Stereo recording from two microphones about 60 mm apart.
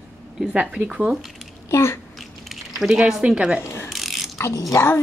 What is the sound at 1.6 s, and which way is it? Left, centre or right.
Speech, left.